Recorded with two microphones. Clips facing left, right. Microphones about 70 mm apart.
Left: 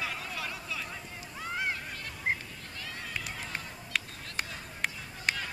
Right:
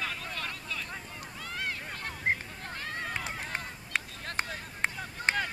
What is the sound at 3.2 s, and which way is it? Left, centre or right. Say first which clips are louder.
Run: right 3 dB; right.